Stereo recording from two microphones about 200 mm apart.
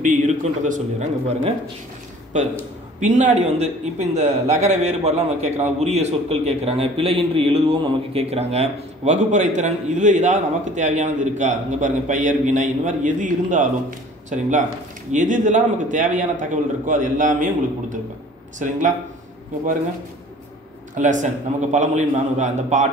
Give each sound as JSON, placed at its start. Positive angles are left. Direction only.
{"t": 0.7, "sound": "a man's voice", "side_deg": -35}
{"t": 20.9, "sound": "a man's voice", "side_deg": -40}